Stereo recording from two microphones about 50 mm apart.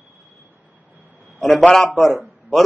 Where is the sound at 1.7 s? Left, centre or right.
Centre.